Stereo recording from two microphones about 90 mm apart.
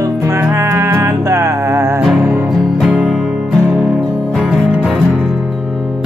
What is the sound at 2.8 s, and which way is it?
Music, 5° right (ahead or behind).